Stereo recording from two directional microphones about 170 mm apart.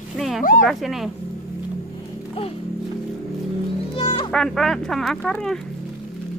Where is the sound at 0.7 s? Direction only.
Centre (ahead or behind).